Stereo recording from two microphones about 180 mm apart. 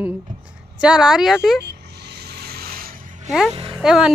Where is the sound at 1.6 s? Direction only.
65° right (ahead or behind).